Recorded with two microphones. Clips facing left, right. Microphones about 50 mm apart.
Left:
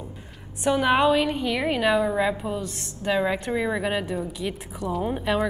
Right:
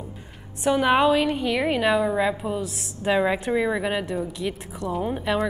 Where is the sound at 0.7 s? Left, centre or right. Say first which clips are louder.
Right 1 dB; centre.